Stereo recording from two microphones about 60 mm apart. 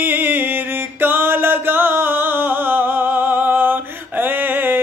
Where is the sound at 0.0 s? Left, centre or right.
Right.